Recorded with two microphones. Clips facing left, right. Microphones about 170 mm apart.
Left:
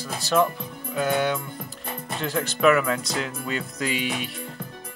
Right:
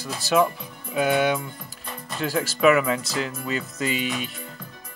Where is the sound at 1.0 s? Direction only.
15° right (ahead or behind).